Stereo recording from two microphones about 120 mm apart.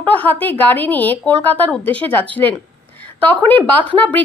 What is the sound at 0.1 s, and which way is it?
A woman's voice, 15° left (ahead or behind).